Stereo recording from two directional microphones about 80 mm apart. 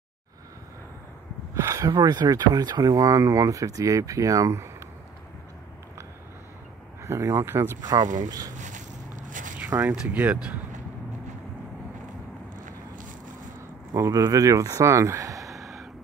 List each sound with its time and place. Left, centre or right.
1.5 s a sound: right
2.0 s speech: right
7.1 s speech: right
7.8 s speech: right
9.9 s speech: centre
13.9 s speech: right
15.5 s a sound: centre